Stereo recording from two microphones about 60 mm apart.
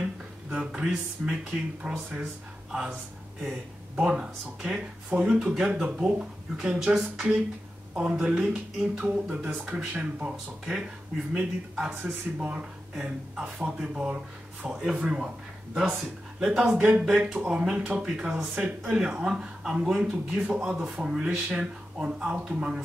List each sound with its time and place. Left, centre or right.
0.0 s a sound: centre
1.5 s speech: centre
9.3 s speech: right
9.9 s speech: centre
16.7 s speech: right
17.0 s speech: centre